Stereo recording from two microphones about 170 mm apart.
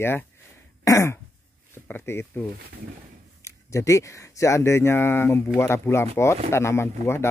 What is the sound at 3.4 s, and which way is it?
Speech, 15° left (ahead or behind).